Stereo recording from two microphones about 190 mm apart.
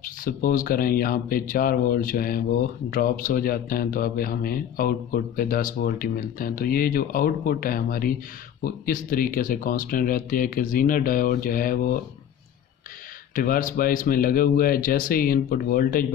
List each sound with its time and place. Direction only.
0.0 s a man's voice: 45° left (ahead or behind)
13.3 s a man's voice: 45° left (ahead or behind)